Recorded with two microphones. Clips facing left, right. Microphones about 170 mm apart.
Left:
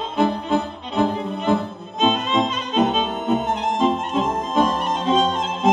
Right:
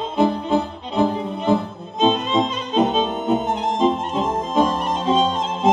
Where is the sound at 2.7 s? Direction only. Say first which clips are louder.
Right 2 dB; 25° right (ahead or behind).